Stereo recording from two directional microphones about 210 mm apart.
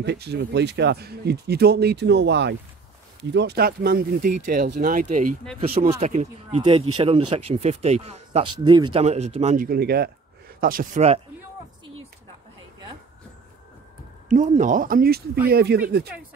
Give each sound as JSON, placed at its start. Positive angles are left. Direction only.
{"t": 0.0, "sound": "speech", "side_deg": -50}
{"t": 9.7, "sound": "speech", "side_deg": -50}
{"t": 14.3, "sound": "speech", "side_deg": -35}